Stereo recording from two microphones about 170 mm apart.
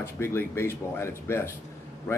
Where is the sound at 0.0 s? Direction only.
15° left (ahead or behind).